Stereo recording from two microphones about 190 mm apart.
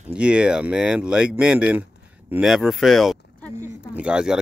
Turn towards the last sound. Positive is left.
turn(degrees=-5)  # may be behind; listen again after turning